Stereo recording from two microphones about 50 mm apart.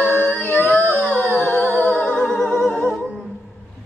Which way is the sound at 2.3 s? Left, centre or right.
Centre.